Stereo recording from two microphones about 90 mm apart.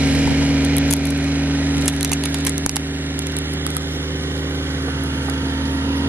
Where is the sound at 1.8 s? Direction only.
5° right (ahead or behind).